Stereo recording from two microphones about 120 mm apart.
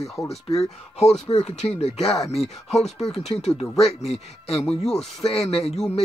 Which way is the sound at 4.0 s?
55° left (ahead or behind).